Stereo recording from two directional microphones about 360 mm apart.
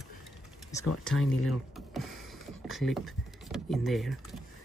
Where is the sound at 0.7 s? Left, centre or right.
Centre.